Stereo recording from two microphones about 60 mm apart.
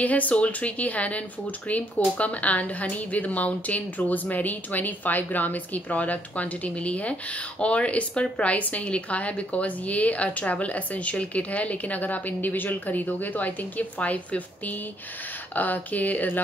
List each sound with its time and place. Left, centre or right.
0.0 s a woman's voice: left